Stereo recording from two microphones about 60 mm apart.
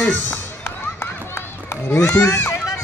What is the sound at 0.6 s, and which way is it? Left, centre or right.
Run, left.